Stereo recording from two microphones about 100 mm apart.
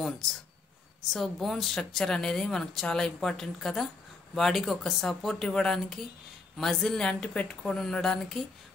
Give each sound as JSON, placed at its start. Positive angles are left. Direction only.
{"t": 1.1, "sound": "a woman's voice", "side_deg": 0}